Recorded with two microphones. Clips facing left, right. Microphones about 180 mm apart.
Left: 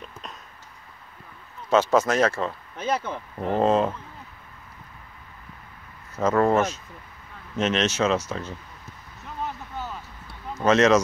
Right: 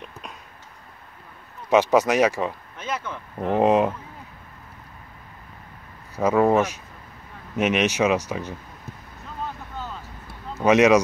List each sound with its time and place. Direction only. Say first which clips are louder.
1.7 s speech: right 2 dB; 15° right (ahead or behind)
2.8 s speech: left 4 dB; 35° left (ahead or behind)
3.3 s speech: right 2 dB; 15° right (ahead or behind)
6.1 s speech: right 2 dB; 15° right (ahead or behind)
10.6 s speech: right 2 dB; 15° right (ahead or behind)